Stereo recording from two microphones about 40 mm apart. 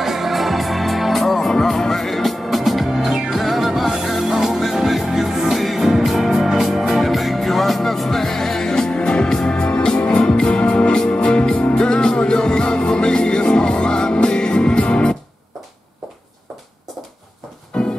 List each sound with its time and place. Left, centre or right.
0.0 s music: centre; by 15.1 s left
17.7 s music: centre